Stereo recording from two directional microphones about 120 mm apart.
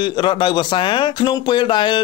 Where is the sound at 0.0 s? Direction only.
40° left (ahead or behind).